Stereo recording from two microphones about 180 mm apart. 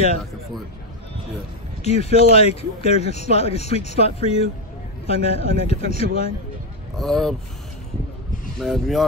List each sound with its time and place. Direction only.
1.8 s speech: 35° left (ahead or behind)
7.0 s speech: centre (ahead or behind)
8.5 s speech: centre (ahead or behind)